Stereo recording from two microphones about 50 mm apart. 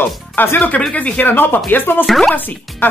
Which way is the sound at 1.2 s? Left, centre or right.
Left.